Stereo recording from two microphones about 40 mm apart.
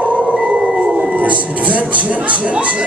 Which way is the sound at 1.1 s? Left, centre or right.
Right.